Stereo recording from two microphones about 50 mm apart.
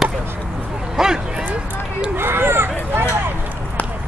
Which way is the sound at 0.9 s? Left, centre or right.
Centre.